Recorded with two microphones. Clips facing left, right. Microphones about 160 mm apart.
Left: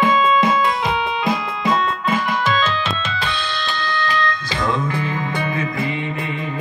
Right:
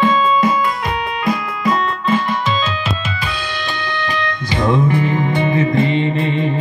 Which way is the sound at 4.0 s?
20° right (ahead or behind).